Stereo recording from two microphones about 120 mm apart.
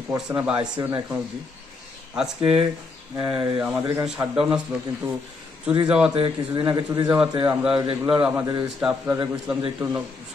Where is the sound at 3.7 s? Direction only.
25° right (ahead or behind).